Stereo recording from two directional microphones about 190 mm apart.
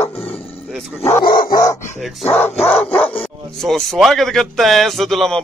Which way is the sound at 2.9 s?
5° left (ahead or behind).